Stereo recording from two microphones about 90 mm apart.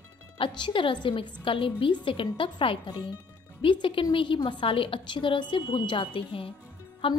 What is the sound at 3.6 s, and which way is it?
A woman's voice, 70° left (ahead or behind).